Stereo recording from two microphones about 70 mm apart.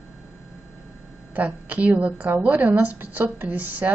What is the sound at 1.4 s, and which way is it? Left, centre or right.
A woman's voice, centre.